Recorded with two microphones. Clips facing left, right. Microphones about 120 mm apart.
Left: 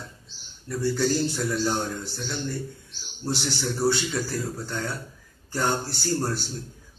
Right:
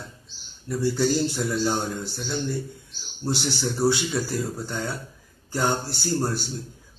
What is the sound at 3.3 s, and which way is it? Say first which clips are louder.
A man's voice: right 1 dB; centre (ahead or behind).